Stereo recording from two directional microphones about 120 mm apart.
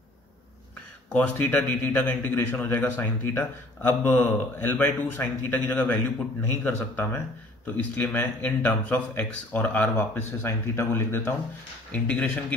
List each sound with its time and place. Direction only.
1.1 s a man's voice: 10° left (ahead or behind)